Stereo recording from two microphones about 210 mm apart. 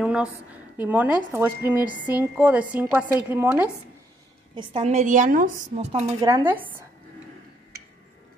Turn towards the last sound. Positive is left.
turn(degrees=-10)  # may be behind; listen again after turning